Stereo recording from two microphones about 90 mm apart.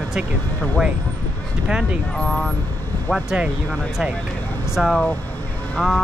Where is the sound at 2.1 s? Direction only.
5° left (ahead or behind).